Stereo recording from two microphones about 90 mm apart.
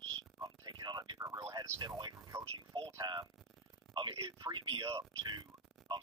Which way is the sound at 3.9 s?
70° right (ahead or behind).